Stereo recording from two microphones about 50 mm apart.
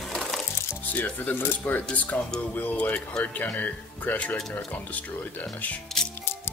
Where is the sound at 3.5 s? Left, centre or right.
Left.